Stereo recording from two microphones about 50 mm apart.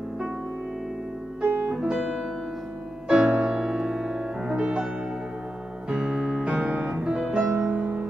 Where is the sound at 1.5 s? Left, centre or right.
Right.